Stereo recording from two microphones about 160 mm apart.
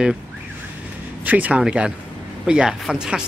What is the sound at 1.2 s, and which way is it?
Speech, 10° right (ahead or behind).